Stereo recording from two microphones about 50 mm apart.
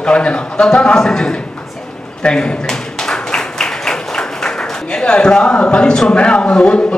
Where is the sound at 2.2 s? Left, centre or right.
Centre.